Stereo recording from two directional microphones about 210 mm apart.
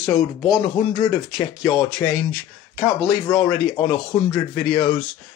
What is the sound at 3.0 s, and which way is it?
A man's voice, 20° left (ahead or behind).